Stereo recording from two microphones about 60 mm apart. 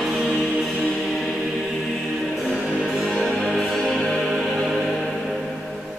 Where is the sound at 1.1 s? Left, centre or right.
Centre.